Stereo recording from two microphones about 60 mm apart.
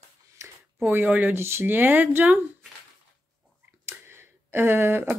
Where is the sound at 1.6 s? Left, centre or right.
Right.